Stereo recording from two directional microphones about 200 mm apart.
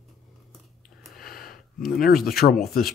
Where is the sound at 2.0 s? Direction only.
45° left (ahead or behind).